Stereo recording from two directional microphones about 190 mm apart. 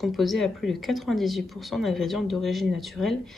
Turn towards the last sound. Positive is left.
turn(degrees=0)  # may be behind; listen again after turning